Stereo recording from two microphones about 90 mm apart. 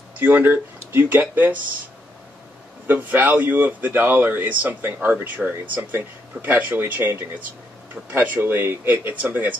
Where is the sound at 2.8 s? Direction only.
20° right (ahead or behind).